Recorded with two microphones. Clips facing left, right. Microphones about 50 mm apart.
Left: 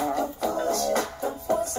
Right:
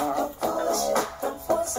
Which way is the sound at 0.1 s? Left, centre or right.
Right.